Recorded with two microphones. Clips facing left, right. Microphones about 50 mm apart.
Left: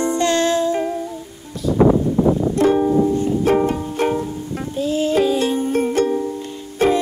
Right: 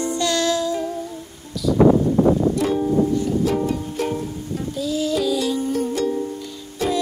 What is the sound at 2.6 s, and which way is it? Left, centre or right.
Music, left.